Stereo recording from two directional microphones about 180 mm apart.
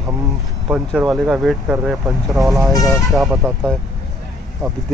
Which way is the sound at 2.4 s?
15° right (ahead or behind).